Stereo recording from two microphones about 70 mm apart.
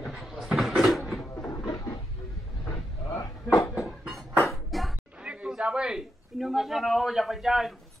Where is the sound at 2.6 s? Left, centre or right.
Left.